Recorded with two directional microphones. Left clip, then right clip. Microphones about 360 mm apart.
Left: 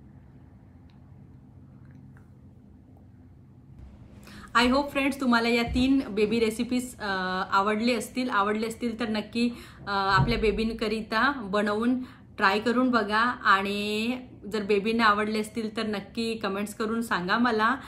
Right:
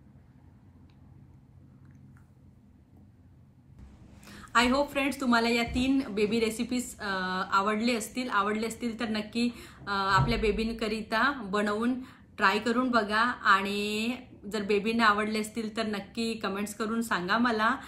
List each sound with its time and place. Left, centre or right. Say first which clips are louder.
4.2 s a woman's voice: left 2 dB; centre